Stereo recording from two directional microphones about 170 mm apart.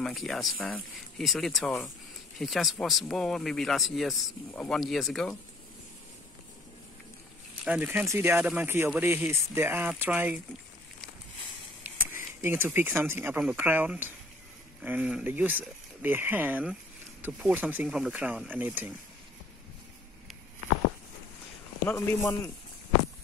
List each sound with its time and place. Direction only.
0.0 s speech: centre (ahead or behind)
7.6 s speech: 10° right (ahead or behind)
11.8 s a sound: 10° right (ahead or behind)
13.2 s speech: 5° right (ahead or behind)
21.8 s speech: 15° left (ahead or behind)